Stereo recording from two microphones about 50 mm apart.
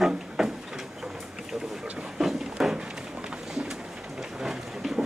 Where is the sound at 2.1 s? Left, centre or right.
Centre.